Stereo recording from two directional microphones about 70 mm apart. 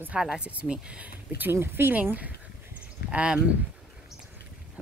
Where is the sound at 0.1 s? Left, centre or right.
Centre.